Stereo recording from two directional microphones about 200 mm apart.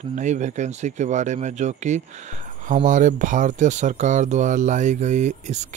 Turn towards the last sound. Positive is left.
turn(degrees=-35)  # may be behind; listen again after turning